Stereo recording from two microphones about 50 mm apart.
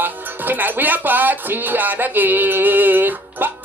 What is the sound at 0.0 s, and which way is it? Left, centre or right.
Speech, right.